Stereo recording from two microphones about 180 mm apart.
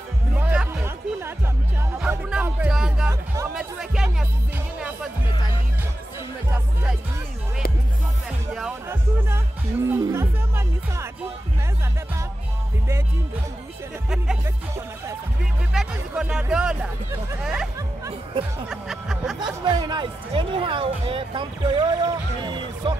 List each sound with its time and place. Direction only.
0.4 s music: 10° right (ahead or behind)
5.3 s music: 25° left (ahead or behind)
6.5 s music: 10° right (ahead or behind)
8.8 s music: 15° right (ahead or behind)
14.1 s speech: 5° right (ahead or behind)
15.7 s speech: 5° right (ahead or behind)
19.6 s speech: 25° right (ahead or behind)